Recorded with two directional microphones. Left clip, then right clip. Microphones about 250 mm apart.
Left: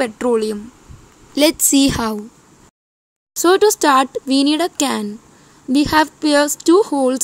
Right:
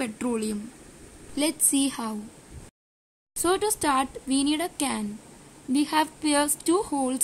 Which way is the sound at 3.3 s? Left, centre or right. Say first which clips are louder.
Left 12 dB; left.